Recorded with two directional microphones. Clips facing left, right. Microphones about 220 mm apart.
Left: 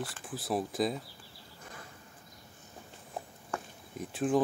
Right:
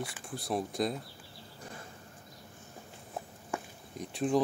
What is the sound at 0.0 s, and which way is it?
Speech, centre (ahead or behind).